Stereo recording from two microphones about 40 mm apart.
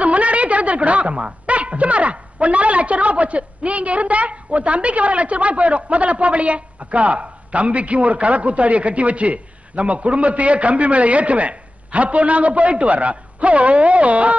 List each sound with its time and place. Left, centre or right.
0.0 s a woman's voice: right